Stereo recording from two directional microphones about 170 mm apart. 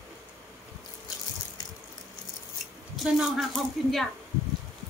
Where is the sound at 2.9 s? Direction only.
Centre (ahead or behind).